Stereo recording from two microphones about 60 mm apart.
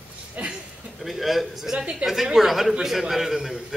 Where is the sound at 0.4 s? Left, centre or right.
Right.